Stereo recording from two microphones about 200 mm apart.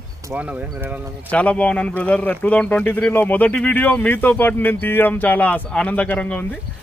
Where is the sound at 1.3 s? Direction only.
5° left (ahead or behind).